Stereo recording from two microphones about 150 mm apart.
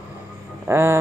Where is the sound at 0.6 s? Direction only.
15° right (ahead or behind).